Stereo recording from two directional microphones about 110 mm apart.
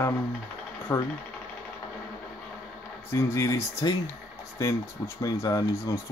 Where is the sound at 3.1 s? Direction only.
25° left (ahead or behind).